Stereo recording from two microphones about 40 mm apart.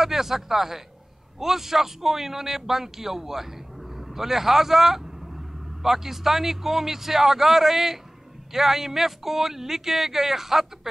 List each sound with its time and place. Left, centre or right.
0.0 s a man's voice: centre